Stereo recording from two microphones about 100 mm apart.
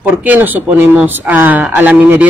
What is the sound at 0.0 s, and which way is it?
A man's voice, 15° right (ahead or behind).